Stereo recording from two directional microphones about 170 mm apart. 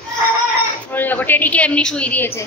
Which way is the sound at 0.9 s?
10° left (ahead or behind).